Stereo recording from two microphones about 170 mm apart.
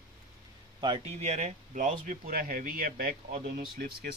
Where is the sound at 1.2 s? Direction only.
45° right (ahead or behind).